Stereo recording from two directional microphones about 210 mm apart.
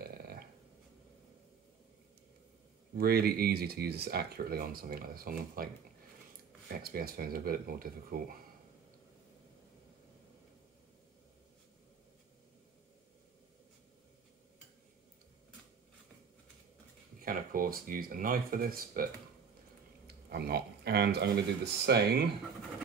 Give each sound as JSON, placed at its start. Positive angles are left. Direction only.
{"t": 0.0, "sound": "burping", "side_deg": -45}
{"t": 3.0, "sound": "speech", "side_deg": -50}
{"t": 6.8, "sound": "speech", "side_deg": -45}
{"t": 17.2, "sound": "speech", "side_deg": -45}
{"t": 20.1, "sound": "speech", "side_deg": -50}